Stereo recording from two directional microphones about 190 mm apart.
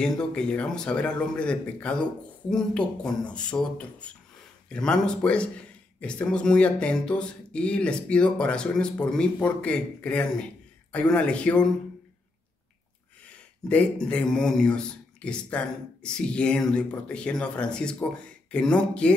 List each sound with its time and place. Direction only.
0.0 s speech: 5° left (ahead or behind)
13.7 s speech: 5° left (ahead or behind)